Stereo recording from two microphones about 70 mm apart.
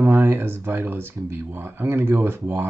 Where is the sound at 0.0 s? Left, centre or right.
Right.